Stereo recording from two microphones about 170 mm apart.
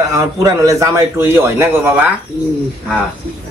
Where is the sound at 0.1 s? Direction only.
20° right (ahead or behind).